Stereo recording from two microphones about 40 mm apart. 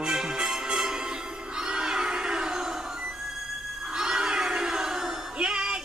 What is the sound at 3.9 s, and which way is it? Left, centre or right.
Crowd, centre.